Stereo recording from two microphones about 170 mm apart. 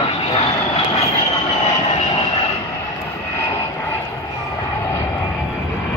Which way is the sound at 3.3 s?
15° left (ahead or behind).